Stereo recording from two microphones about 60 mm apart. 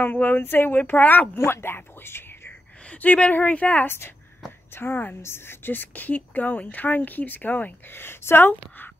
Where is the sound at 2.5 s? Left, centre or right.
Left.